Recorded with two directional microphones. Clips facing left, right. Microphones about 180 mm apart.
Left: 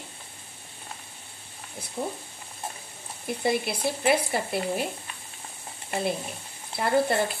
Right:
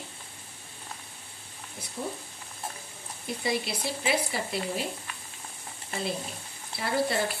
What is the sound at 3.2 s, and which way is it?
Speech, 55° left (ahead or behind).